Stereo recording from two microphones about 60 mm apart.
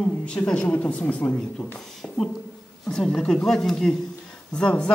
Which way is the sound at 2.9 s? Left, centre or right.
Centre.